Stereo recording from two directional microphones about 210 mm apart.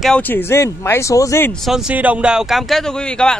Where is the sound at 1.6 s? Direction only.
Centre (ahead or behind).